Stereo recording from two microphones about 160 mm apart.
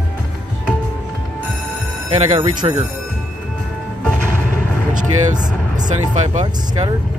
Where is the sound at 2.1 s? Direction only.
35° right (ahead or behind).